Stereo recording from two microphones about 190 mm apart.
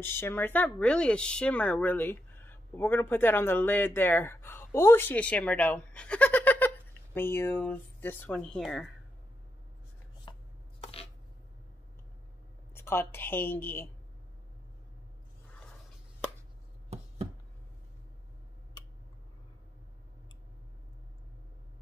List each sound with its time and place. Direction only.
0.0 s speech: 10° left (ahead or behind)
10.3 s chopping: 25° left (ahead or behind)
12.7 s a woman's voice: 10° left (ahead or behind)